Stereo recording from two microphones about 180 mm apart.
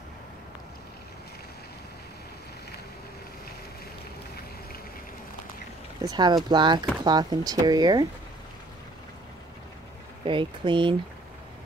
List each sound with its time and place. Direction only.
6.0 s speech: 20° right (ahead or behind)
10.2 s speech: 30° right (ahead or behind)